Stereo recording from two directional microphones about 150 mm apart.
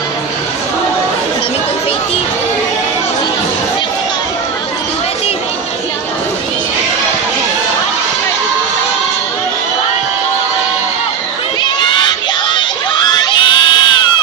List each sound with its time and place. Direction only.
11.6 s crowd: 30° left (ahead or behind)